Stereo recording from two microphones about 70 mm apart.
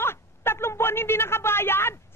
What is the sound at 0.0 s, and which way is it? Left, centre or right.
Speech, left.